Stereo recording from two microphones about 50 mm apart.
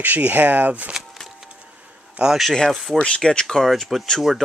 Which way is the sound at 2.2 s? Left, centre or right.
Right.